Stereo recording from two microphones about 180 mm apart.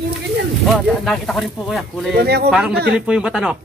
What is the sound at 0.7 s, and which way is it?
Speech, centre (ahead or behind).